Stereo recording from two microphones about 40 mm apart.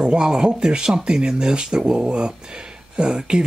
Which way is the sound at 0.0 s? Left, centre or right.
Right.